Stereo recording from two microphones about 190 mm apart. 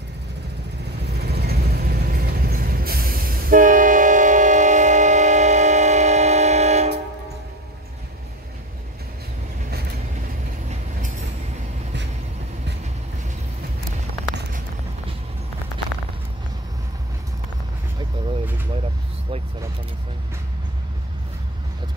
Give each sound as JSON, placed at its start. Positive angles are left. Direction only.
{"t": 1.4, "sound": "vehicle", "side_deg": -55}
{"t": 10.7, "sound": "train", "side_deg": -35}
{"t": 17.9, "sound": "vehicle", "side_deg": -25}